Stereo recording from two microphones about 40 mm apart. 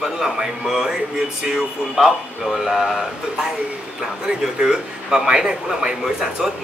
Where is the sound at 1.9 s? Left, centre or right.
Centre.